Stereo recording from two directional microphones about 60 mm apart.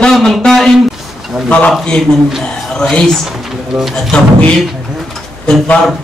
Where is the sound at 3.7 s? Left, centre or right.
Centre.